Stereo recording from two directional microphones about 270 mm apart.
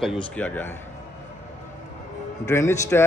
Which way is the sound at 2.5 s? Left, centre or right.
Centre.